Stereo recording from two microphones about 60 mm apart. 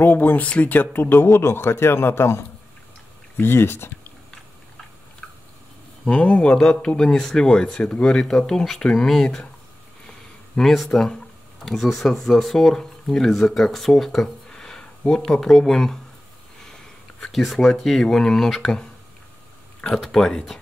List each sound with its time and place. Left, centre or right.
0.0 s speech: left
5.2 s biting: centre
6.0 s speech: centre
10.0 s a sound: centre
11.6 s speech: centre
14.5 s a sound: centre
15.4 s speech: centre
17.3 s speech: centre
20.0 s speech: centre